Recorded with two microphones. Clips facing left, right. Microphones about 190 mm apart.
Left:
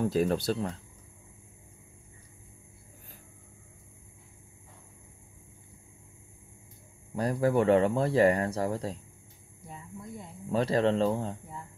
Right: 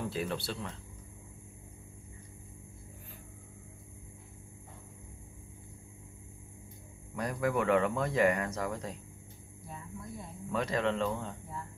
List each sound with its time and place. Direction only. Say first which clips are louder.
0.0 s speech: left 9 dB; 40° left (ahead or behind)
7.2 s speech: left 6 dB; 30° left (ahead or behind)
9.6 s a sound: left 1 dB; 20° left (ahead or behind)
10.5 s speech: left 6 dB; 35° left (ahead or behind)